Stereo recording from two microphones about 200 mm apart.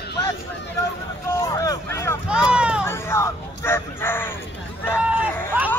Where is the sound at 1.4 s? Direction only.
15° left (ahead or behind).